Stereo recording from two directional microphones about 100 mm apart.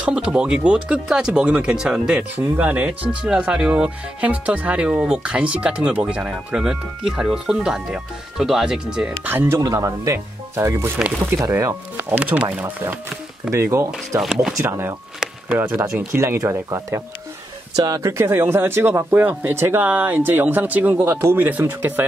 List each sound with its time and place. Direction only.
0.0 s speech: 10° right (ahead or behind)
9.3 s speech: 25° right (ahead or behind)
9.6 s speech: 35° right (ahead or behind)
12.0 s speech: 15° right (ahead or behind)
14.2 s speech: 5° right (ahead or behind)
14.6 s speech: 25° right (ahead or behind)
16.1 s speech: 30° right (ahead or behind)